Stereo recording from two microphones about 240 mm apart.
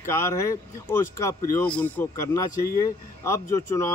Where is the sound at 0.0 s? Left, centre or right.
Centre.